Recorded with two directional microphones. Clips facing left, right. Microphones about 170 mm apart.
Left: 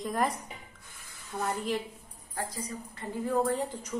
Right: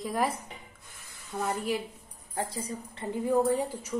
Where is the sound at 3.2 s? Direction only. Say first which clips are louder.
Right 3 dB; 15° right (ahead or behind).